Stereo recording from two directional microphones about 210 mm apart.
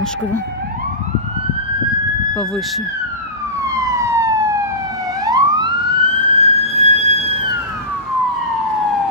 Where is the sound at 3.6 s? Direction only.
15° right (ahead or behind).